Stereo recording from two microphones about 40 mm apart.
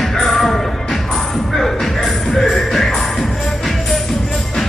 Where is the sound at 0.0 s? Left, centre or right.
Centre.